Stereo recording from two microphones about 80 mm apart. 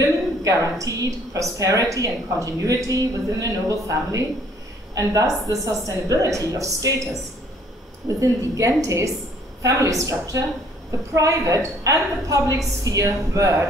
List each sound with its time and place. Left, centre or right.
0.0 s a woman's voice: right
8.2 s a woman's voice: right